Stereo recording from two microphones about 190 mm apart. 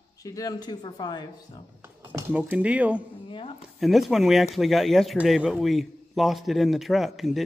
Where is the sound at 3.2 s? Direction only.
25° left (ahead or behind).